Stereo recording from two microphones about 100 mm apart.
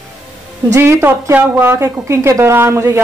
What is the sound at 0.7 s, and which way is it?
A woman's voice, 25° right (ahead or behind).